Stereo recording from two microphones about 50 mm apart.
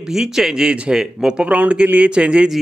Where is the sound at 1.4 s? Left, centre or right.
Right.